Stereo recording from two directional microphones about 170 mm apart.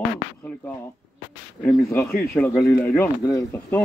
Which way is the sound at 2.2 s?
15° left (ahead or behind).